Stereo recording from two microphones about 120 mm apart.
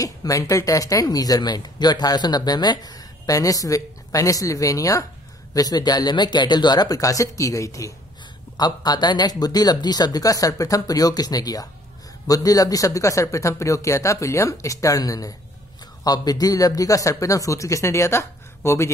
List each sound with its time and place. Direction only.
0.0 s speech: 30° left (ahead or behind)